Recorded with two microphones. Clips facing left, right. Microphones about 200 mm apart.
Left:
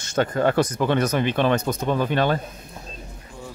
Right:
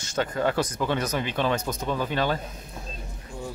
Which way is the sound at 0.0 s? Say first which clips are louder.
Left 5 dB; 55° left (ahead or behind).